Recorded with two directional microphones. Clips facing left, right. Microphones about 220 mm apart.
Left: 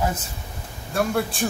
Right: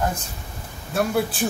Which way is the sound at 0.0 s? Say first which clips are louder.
Even; 5° left (ahead or behind).